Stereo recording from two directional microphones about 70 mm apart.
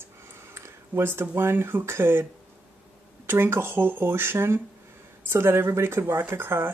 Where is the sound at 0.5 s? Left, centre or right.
Right.